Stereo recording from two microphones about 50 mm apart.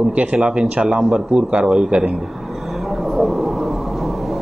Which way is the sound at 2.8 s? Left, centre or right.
Centre.